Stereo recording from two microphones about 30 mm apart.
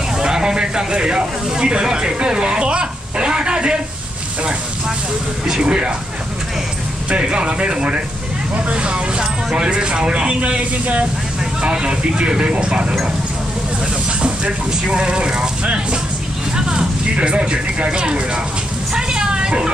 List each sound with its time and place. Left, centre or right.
0.2 s a sound: right
0.6 s speech: right
5.6 s speech: right
7.2 s speech: right
9.2 s speech: right
14.7 s speech: right
16.5 s speech: right
18.9 s a sound: right